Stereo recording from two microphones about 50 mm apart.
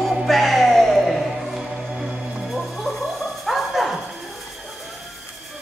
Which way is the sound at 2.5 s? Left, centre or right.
Centre.